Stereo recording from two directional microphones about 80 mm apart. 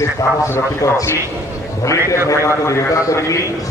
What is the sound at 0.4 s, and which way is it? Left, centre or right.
A man's voice, left.